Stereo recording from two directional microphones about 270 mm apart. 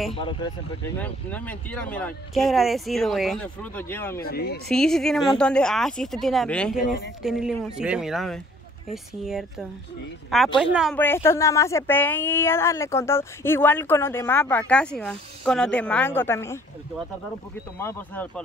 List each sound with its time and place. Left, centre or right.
0.1 s speech: centre
0.9 s speech: centre
4.2 s speech: left
4.6 s speech: centre
17.7 s speech: centre